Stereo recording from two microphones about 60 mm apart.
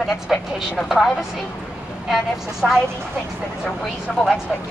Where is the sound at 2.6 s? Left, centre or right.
Centre.